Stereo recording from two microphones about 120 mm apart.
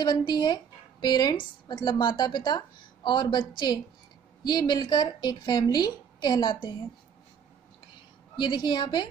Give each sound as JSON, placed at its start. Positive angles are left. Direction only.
{"t": 0.0, "sound": "a woman's voice", "side_deg": 40}
{"t": 8.4, "sound": "a woman's voice", "side_deg": 40}